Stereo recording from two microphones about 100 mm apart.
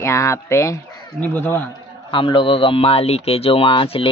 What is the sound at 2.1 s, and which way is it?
Speech, 55° left (ahead or behind).